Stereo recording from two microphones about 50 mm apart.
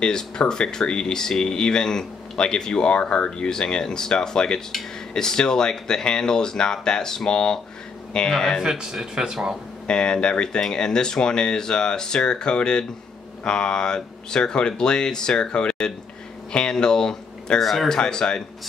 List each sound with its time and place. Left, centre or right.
0.0 s speech: centre
8.6 s speech: centre
9.8 s speech: centre
17.6 s speech: centre